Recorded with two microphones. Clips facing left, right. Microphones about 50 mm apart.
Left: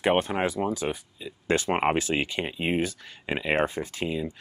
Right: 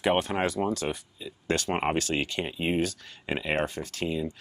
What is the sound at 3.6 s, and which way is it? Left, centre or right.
Speech, left.